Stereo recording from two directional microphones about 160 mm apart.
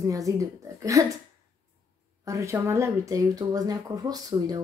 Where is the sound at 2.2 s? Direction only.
20° right (ahead or behind).